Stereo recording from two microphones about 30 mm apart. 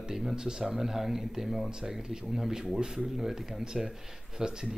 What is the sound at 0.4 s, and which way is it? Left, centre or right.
Speech, right.